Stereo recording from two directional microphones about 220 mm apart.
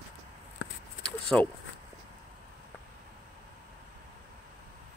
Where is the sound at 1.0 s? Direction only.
5° left (ahead or behind).